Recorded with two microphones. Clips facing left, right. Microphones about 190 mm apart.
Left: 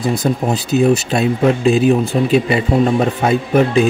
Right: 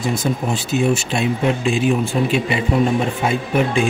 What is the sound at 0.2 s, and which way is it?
Speech, 45° left (ahead or behind).